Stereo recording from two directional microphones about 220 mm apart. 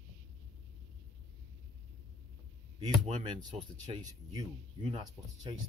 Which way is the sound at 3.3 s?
20° right (ahead or behind).